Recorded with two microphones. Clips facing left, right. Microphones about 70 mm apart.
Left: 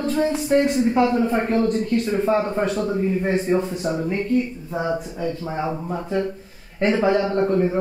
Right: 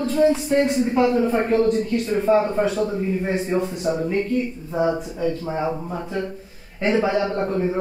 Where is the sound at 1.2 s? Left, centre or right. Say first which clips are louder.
Right 2 dB; centre.